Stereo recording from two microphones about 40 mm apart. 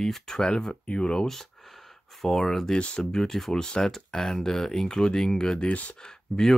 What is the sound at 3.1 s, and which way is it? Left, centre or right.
Speech, centre.